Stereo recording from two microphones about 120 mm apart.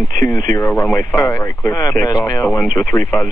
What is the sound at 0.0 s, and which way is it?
Speech, 25° left (ahead or behind).